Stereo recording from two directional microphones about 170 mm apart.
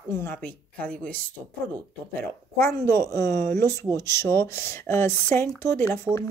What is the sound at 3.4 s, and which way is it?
Speech, 70° right (ahead or behind).